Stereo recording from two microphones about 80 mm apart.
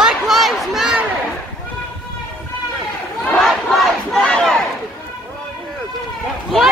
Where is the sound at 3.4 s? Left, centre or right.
Centre.